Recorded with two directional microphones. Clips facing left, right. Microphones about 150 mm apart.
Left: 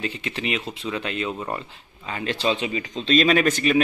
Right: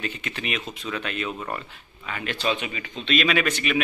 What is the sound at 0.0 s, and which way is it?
A man's voice, 30° left (ahead or behind).